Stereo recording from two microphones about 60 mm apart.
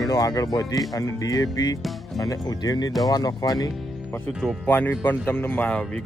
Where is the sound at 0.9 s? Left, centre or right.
Left.